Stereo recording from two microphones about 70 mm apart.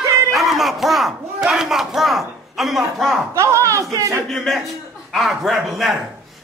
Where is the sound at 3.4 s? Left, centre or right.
Right.